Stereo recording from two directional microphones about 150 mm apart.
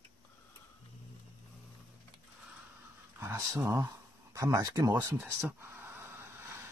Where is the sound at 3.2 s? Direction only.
20° right (ahead or behind).